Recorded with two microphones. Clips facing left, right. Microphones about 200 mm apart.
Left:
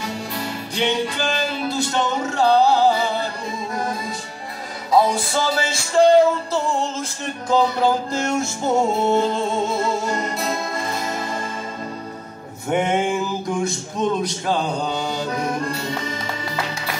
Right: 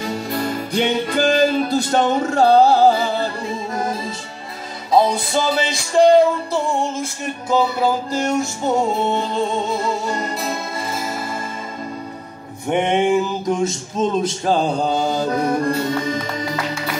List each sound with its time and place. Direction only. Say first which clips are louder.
0.7 s music: right 3 dB; 45° right (ahead or behind)
3.7 s music: right 1 dB; 25° right (ahead or behind)
4.9 s a sound: right 2 dB; 20° right (ahead or behind)
6.5 s music: right 2 dB; 10° right (ahead or behind)
12.6 s a sound: right 3 dB; 20° right (ahead or behind)
14.4 s mantra: right 4 dB; 45° right (ahead or behind)
15.3 s accordion: right 5 dB; 35° right (ahead or behind)